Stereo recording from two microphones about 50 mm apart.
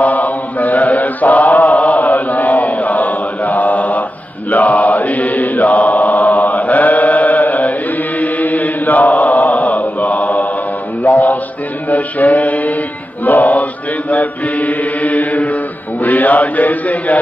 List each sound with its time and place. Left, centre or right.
0.0 s chant: left
4.5 s mantra: left
8.2 s chant: left
11.0 s mantra: left
13.2 s chant: left